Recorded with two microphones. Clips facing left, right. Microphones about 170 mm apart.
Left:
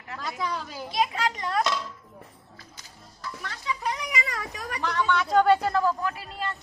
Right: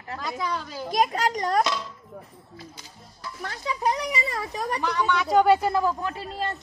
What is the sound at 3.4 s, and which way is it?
Speech, 40° right (ahead or behind).